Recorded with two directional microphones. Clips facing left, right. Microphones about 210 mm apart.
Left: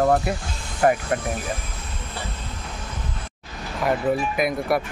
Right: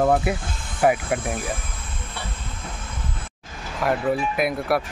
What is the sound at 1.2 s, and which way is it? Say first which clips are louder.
Speech: even; 50° right (ahead or behind).